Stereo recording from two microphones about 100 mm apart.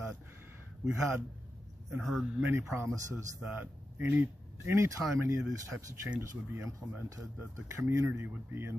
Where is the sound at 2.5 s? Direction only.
25° right (ahead or behind).